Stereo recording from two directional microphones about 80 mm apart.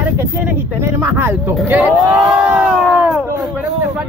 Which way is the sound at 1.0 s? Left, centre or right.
Right.